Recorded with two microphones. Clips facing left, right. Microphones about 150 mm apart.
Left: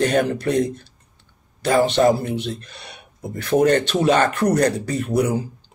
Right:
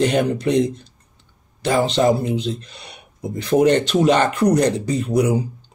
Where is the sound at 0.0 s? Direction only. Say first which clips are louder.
Right 1 dB; 20° right (ahead or behind).